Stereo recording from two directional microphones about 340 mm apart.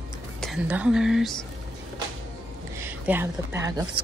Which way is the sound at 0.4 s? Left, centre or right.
Centre.